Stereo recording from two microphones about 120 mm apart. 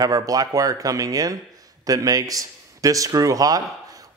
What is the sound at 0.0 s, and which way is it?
A man's voice, 30° right (ahead or behind).